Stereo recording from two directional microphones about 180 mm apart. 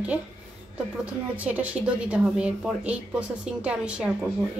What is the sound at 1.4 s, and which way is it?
Speech, 10° right (ahead or behind).